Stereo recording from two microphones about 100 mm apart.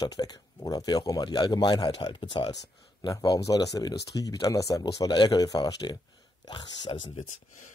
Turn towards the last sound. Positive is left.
turn(degrees=45)  # may be behind; listen again after turning